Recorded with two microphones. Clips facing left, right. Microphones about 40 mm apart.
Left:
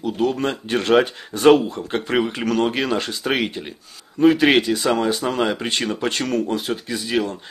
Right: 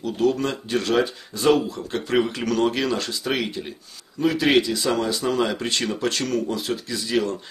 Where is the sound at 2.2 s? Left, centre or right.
Centre.